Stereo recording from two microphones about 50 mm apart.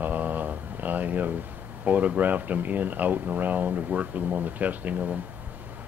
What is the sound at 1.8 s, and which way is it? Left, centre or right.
Speech, right.